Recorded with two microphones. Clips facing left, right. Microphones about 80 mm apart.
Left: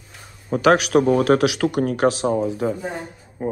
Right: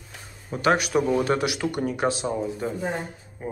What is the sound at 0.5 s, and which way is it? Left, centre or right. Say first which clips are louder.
Speech: left 6 dB; left.